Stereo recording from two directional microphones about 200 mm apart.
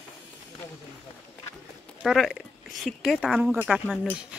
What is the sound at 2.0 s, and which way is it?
Speech, centre (ahead or behind).